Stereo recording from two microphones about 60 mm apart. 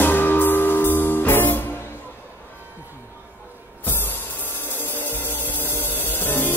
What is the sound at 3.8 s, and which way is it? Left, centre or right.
Music, left.